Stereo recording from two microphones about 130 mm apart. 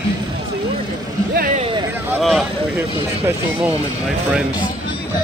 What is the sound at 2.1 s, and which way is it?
Speech, centre (ahead or behind).